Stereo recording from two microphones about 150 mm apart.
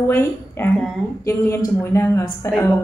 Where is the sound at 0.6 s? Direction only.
15° left (ahead or behind).